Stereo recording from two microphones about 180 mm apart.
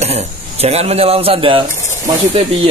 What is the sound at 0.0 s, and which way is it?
A man's voice, 35° right (ahead or behind).